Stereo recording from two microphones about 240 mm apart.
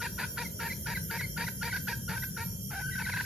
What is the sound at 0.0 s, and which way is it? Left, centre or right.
Chicken, centre.